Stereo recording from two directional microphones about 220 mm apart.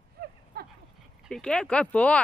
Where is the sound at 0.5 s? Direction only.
45° right (ahead or behind).